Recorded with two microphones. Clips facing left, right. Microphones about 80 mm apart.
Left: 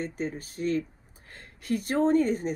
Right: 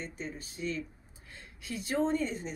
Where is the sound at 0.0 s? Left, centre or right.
Left.